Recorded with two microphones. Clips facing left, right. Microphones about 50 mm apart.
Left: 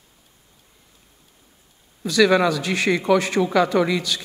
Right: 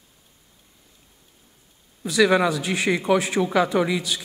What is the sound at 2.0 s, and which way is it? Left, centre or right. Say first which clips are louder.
A man's voice: left 2 dB; centre.